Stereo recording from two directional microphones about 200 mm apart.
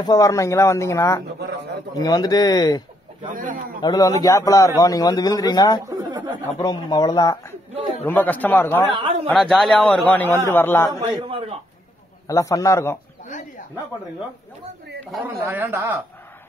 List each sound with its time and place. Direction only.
0.0 s a man's voice: 15° left (ahead or behind)
1.4 s a man's voice: 60° right (ahead or behind)
2.0 s speech: 20° left (ahead or behind)
3.3 s speech: 40° right (ahead or behind)
3.8 s a man's voice: 20° left (ahead or behind)
5.9 s a sound: 20° right (ahead or behind)
6.6 s speech: 20° left (ahead or behind)
8.0 s a man's voice: 10° left (ahead or behind)
8.9 s a man's voice: 25° right (ahead or behind)
9.3 s a man's voice: centre (ahead or behind)
11.0 s a man's voice: 25° right (ahead or behind)
12.3 s a man's voice: 15° left (ahead or behind)
15.0 s speech: 10° right (ahead or behind)